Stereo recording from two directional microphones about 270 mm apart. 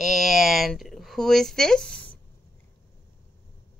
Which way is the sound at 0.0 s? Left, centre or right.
Centre.